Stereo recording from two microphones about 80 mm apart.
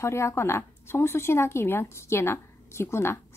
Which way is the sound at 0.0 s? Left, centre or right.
Left.